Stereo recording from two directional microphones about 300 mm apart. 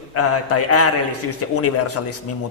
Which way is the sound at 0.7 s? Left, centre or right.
Left.